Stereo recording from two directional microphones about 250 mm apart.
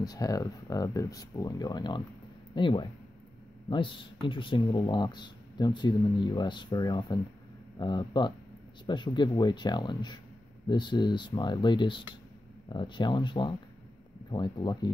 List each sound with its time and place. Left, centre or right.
0.0 s speech: centre